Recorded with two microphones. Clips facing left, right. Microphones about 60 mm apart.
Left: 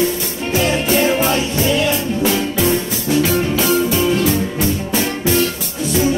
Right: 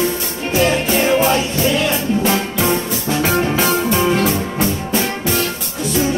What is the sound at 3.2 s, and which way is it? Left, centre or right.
Music, right.